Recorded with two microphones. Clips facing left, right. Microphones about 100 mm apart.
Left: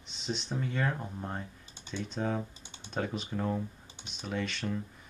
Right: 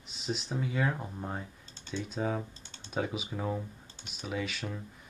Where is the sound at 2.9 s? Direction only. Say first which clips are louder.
Even; 5° right (ahead or behind).